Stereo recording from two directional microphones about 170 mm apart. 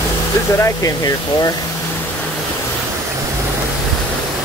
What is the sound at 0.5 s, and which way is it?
Speech, 20° left (ahead or behind).